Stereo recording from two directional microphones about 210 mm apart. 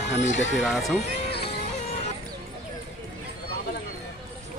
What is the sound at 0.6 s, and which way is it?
Speech, centre (ahead or behind).